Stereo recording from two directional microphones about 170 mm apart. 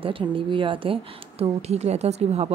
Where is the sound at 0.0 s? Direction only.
30° right (ahead or behind).